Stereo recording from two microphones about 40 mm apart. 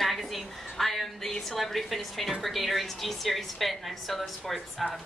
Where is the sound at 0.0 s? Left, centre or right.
Centre.